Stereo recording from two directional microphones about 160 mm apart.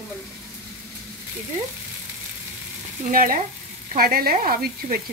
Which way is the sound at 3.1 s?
60° right (ahead or behind).